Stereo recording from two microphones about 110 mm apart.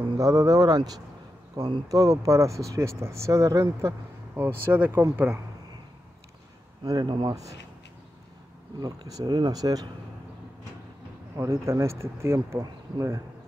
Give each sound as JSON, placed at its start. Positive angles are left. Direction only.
{"t": 0.2, "sound": "speech", "side_deg": -35}
{"t": 4.4, "sound": "speech", "side_deg": -20}
{"t": 6.8, "sound": "speech", "side_deg": -40}
{"t": 8.7, "sound": "speech", "side_deg": -35}
{"t": 11.3, "sound": "speech", "side_deg": -25}